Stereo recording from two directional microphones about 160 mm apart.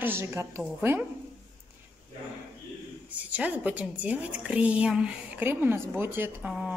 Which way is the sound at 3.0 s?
10° right (ahead or behind).